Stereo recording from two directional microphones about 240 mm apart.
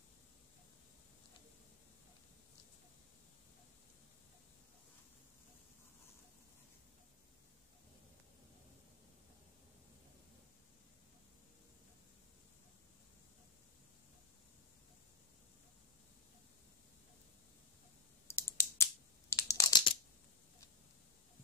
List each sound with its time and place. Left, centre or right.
18.2 s computer keyboard: centre